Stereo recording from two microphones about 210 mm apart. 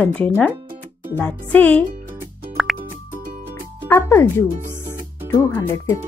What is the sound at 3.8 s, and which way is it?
Speech, 10° left (ahead or behind).